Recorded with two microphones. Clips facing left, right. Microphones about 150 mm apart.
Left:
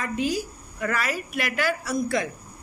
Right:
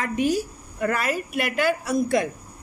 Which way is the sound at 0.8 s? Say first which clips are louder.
Right 3 dB; 50° right (ahead or behind).